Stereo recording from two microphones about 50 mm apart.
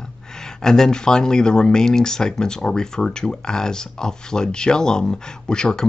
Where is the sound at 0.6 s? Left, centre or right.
Centre.